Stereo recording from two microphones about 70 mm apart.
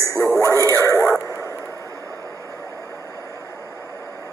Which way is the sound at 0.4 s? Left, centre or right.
Left.